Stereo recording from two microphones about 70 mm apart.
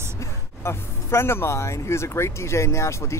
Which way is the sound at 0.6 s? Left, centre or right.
Left.